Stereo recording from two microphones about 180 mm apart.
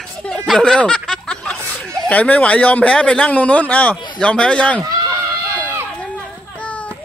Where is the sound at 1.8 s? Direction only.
5° left (ahead or behind).